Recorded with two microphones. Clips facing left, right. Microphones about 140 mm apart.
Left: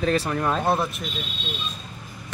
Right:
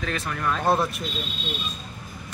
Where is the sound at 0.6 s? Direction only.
Centre (ahead or behind).